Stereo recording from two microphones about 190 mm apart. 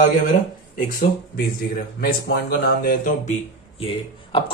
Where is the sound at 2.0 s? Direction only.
50° left (ahead or behind).